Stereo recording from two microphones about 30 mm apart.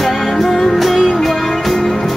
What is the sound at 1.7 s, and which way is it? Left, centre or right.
Music, centre.